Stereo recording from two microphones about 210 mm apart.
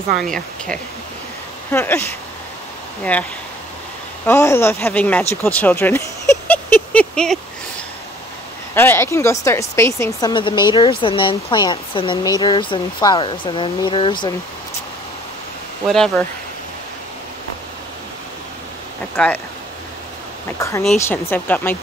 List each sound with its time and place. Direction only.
0.2 s speech: 5° left (ahead or behind)
4.3 s speech: 15° left (ahead or behind)
8.7 s speech: 10° left (ahead or behind)
15.9 s speech: centre (ahead or behind)
19.1 s speech: 10° left (ahead or behind)
20.4 s speech: 15° left (ahead or behind)